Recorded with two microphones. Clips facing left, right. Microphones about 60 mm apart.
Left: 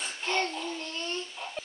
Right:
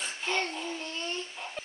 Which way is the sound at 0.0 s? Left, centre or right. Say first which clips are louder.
Left 1 dB; centre.